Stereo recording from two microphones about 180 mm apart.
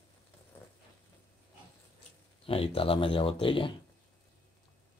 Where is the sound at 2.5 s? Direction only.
30° left (ahead or behind).